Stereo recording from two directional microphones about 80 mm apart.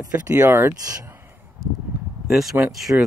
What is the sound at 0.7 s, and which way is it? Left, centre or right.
Speech, right.